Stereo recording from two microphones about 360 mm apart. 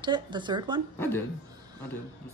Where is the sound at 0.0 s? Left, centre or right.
Centre.